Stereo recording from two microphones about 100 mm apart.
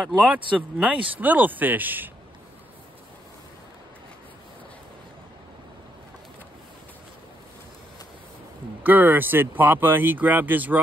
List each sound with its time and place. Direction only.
0.0 s speech: 5° right (ahead or behind)
8.8 s speech: 20° right (ahead or behind)